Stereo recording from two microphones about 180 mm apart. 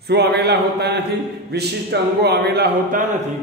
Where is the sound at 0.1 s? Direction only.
65° right (ahead or behind).